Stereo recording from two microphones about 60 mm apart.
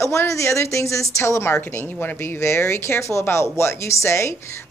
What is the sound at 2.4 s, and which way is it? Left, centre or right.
A woman's voice, left.